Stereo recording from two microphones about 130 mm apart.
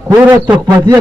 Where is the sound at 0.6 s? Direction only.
30° right (ahead or behind).